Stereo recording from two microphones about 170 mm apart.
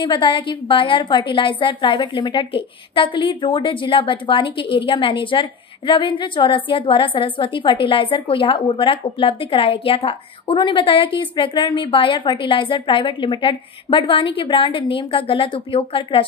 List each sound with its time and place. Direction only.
0.0 s a woman's voice: 30° left (ahead or behind)